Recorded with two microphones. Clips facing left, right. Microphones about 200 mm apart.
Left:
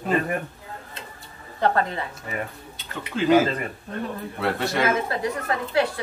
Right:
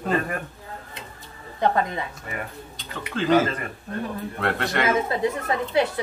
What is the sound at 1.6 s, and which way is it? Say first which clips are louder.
Speech: even; 15° right (ahead or behind).